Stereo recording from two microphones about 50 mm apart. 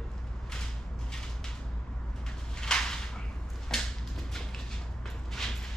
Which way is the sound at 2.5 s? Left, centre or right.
Centre.